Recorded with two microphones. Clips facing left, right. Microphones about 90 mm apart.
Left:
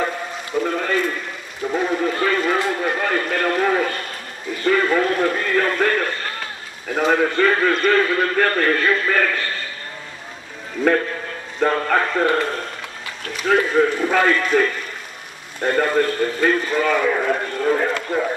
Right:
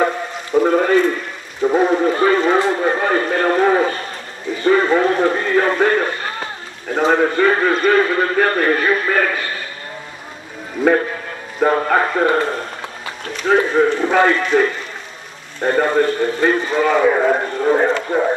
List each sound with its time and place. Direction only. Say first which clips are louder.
0.6 s a sound: right 8 dB; 35° right (ahead or behind)
1.6 s a man's voice: right 6 dB; 30° right (ahead or behind); by 9.4 s 15° right (ahead or behind)
10.8 s a man's voice: right 3 dB; 15° right (ahead or behind)
13.5 s a man's voice: right 3 dB; 20° right (ahead or behind)
15.6 s a man's voice: right 3 dB; 15° right (ahead or behind)